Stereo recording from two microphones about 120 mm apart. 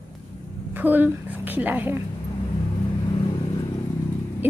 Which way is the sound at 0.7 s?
15° right (ahead or behind).